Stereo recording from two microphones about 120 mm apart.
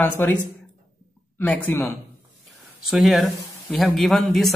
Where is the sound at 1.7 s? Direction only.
15° left (ahead or behind).